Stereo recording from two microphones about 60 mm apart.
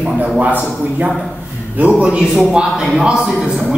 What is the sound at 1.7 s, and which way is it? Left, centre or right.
A man's voice, right.